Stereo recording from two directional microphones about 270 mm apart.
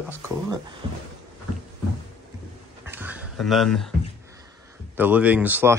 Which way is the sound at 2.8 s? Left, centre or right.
Centre.